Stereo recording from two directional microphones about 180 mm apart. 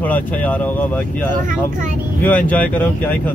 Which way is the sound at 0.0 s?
10° left (ahead or behind).